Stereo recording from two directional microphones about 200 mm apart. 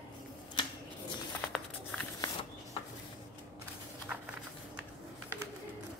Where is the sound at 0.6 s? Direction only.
25° left (ahead or behind).